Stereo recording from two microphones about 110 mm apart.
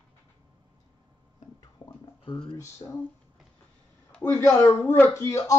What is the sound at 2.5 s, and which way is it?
Speech, 25° left (ahead or behind).